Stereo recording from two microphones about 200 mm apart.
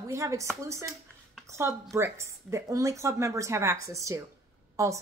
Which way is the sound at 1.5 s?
15° right (ahead or behind).